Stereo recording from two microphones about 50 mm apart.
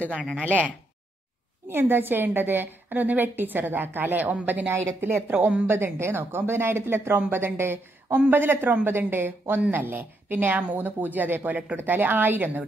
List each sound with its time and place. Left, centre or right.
0.4 s a woman's voice: right
1.7 s a woman's voice: right
4.6 s speech: right
5.3 s a woman's voice: right
5.7 s a woman's voice: right